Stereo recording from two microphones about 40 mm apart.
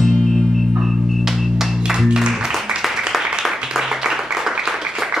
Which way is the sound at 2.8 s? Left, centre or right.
Centre.